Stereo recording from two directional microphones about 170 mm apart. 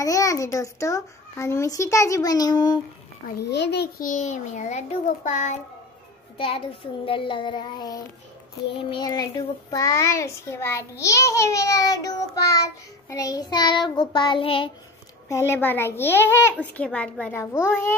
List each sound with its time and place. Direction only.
0.0 s child singing: 20° left (ahead or behind)
3.4 s a child's voice: 85° left; by 5.6 s 45° left (ahead or behind)
6.3 s a child's voice: 30° left (ahead or behind)
7.1 s child singing: 30° left (ahead or behind)
15.2 s a child's voice: 15° left (ahead or behind)